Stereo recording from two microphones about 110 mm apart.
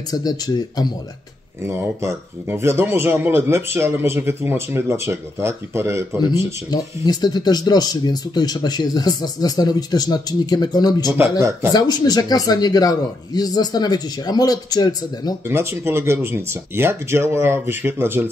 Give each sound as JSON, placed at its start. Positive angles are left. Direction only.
{"t": 0.1, "sound": "speech", "side_deg": 35}
{"t": 1.6, "sound": "speech", "side_deg": -25}
{"t": 6.7, "sound": "speech", "side_deg": 40}
{"t": 15.4, "sound": "speech", "side_deg": -25}